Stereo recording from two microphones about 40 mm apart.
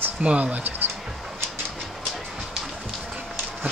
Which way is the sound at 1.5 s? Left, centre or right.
Centre.